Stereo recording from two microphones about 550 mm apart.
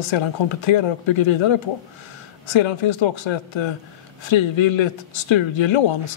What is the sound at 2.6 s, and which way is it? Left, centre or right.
Speech, left.